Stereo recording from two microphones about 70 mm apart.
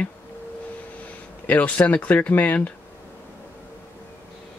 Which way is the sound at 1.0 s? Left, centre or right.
Left.